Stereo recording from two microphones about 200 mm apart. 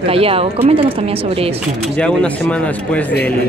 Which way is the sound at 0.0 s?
30° right (ahead or behind).